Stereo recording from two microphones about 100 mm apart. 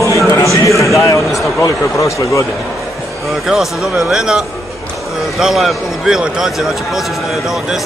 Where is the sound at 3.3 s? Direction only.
5° right (ahead or behind).